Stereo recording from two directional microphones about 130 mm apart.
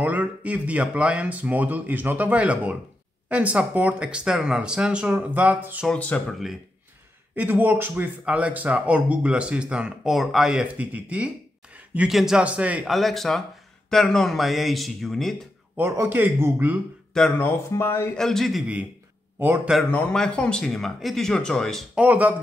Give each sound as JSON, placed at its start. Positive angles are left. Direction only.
{"t": 0.0, "sound": "speech", "side_deg": -10}
{"t": 5.9, "sound": "speech", "side_deg": 10}
{"t": 7.3, "sound": "speech", "side_deg": -15}
{"t": 12.9, "sound": "speech", "side_deg": 0}
{"t": 15.7, "sound": "speech", "side_deg": -15}
{"t": 17.1, "sound": "speech", "side_deg": 5}
{"t": 17.5, "sound": "speech", "side_deg": 20}
{"t": 18.1, "sound": "speech", "side_deg": 5}
{"t": 19.4, "sound": "speech", "side_deg": -15}
{"t": 19.9, "sound": "speech", "side_deg": 10}
{"t": 21.9, "sound": "speech", "side_deg": -10}